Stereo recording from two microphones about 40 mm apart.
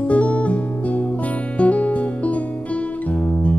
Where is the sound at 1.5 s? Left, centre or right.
Left.